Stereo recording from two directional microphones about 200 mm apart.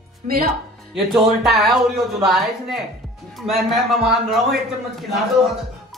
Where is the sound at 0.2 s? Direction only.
45° right (ahead or behind).